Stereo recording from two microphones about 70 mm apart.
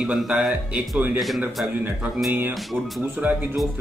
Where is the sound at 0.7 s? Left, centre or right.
Centre.